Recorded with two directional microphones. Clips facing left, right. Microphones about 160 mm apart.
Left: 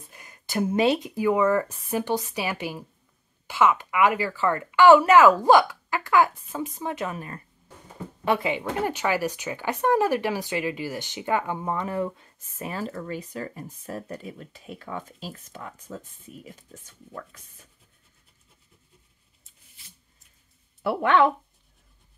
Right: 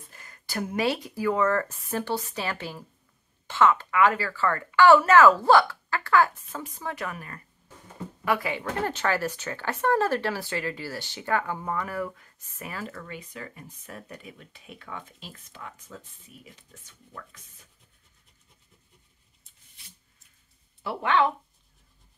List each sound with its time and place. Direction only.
0.1 s speech: 20° left (ahead or behind); by 17.2 s 40° left (ahead or behind)
20.8 s speech: 55° left (ahead or behind)